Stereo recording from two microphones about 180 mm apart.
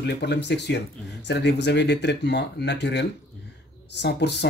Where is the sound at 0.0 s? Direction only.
70° left (ahead or behind).